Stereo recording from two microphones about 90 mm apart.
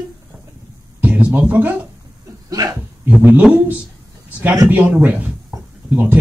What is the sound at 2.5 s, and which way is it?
Speech, 45° right (ahead or behind).